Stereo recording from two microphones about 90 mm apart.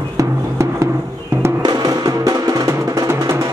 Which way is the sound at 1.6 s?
45° right (ahead or behind).